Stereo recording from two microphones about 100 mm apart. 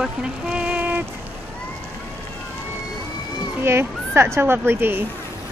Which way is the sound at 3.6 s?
25° right (ahead or behind).